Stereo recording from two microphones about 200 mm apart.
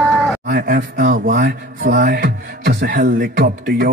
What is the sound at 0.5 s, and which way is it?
Mantra, 45° right (ahead or behind).